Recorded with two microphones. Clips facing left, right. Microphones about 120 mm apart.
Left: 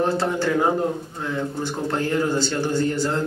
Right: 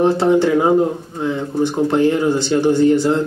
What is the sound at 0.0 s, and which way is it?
Speech, 20° right (ahead or behind).